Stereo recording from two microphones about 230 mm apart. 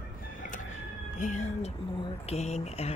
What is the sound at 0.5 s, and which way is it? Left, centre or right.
Chicken, left.